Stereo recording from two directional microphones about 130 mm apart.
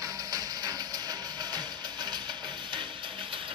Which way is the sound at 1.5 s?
35° right (ahead or behind).